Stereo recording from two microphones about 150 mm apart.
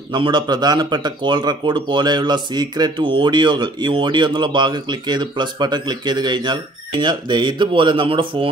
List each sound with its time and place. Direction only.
0.1 s speech: 30° right (ahead or behind)